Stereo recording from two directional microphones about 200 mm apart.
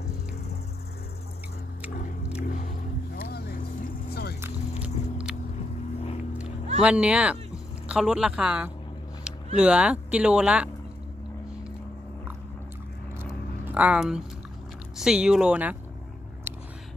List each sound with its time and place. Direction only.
2.4 s music: 40° left (ahead or behind)
3.2 s vehicle: 50° left (ahead or behind)
4.1 s music: 55° left (ahead or behind)
4.4 s music: 5° right (ahead or behind)
6.8 s speech: 5° right (ahead or behind)
13.7 s speech: 5° right (ahead or behind)
16.5 s vehicle: 10° right (ahead or behind)